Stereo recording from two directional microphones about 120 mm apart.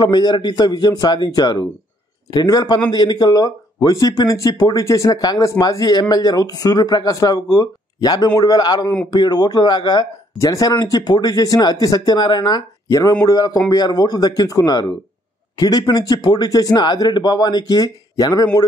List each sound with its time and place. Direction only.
0.0 s speech: 35° left (ahead or behind)